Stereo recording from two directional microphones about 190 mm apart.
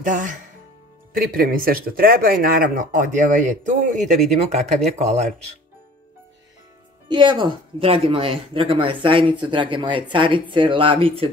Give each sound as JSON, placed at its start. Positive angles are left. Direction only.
{"t": 0.0, "sound": "speech", "side_deg": -40}
{"t": 7.1, "sound": "speech", "side_deg": -25}